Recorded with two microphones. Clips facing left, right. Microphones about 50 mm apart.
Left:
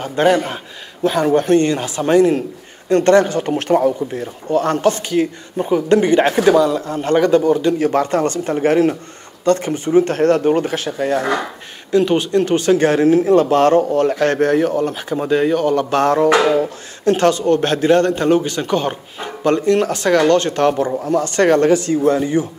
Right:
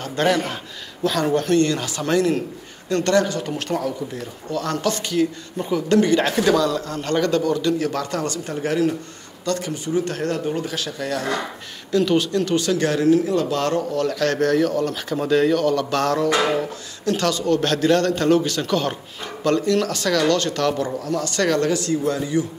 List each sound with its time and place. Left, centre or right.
0.0 s speech: left